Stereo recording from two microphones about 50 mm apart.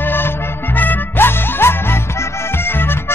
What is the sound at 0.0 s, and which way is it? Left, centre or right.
Music, left.